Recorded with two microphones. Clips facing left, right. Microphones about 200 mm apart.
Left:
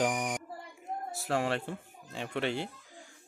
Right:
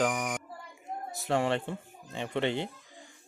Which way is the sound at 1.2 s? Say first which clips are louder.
Right 3 dB; 5° left (ahead or behind).